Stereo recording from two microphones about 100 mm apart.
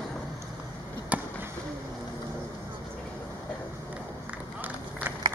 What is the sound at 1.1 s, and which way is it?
Chop, 15° right (ahead or behind).